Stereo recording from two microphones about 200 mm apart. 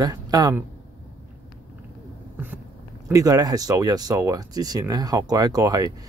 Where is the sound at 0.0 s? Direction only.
20° right (ahead or behind).